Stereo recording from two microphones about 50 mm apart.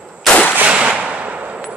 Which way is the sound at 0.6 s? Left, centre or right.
Right.